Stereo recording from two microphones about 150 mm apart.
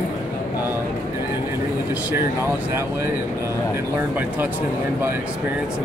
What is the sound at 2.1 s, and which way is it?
Speech, 15° right (ahead or behind).